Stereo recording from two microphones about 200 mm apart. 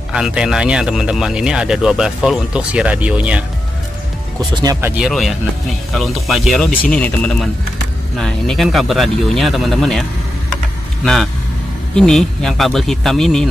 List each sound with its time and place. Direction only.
0.1 s speech: 5° right (ahead or behind)
4.4 s speech: 20° right (ahead or behind)
5.0 s speech: centre (ahead or behind)
11.9 s speech: 5° left (ahead or behind)